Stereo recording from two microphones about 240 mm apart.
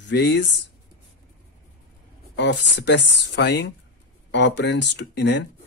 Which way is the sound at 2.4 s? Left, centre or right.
Left.